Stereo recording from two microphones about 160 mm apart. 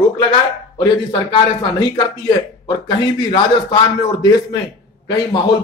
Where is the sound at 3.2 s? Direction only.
30° left (ahead or behind).